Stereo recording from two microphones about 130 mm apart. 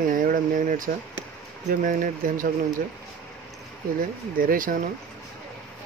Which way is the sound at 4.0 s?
90° right.